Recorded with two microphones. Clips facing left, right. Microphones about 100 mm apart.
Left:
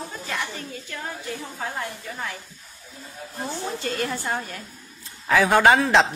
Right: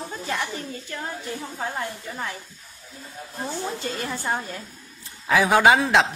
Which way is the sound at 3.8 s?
25° right (ahead or behind).